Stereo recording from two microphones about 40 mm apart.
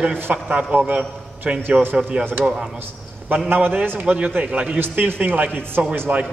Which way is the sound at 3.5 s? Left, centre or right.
Right.